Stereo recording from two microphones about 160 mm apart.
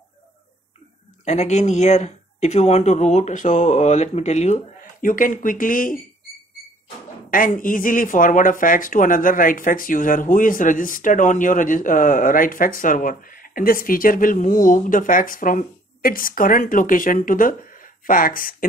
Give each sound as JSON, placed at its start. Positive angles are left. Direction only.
{"t": 1.2, "sound": "speech", "side_deg": 45}
{"t": 5.0, "sound": "speech", "side_deg": 55}
{"t": 7.2, "sound": "speech", "side_deg": 60}